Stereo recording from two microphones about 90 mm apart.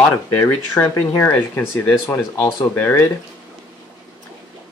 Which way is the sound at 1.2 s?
20° left (ahead or behind).